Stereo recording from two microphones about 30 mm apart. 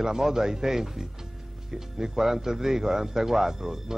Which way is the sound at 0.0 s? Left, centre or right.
Centre.